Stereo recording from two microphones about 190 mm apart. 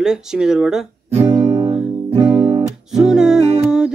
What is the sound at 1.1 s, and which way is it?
Music, 25° right (ahead or behind).